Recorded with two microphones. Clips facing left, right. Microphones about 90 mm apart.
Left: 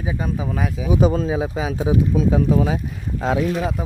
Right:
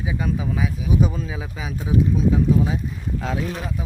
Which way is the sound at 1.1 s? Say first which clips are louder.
Left 9 dB; 50° left (ahead or behind).